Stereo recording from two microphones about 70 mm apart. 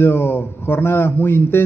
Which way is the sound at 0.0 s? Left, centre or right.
Left.